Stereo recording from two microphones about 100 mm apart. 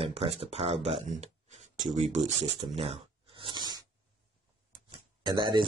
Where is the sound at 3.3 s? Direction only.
50° right (ahead or behind).